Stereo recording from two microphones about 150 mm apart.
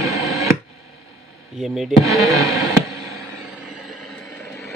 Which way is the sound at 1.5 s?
Centre (ahead or behind).